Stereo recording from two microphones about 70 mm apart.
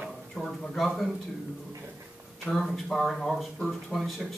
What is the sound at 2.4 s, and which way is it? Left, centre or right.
Speech, centre.